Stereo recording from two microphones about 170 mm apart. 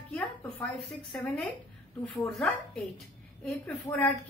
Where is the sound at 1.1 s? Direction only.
5° left (ahead or behind).